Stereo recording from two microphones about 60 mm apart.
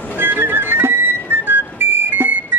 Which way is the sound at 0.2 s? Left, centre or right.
Right.